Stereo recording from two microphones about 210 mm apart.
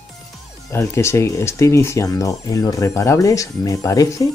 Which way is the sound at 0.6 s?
10° left (ahead or behind).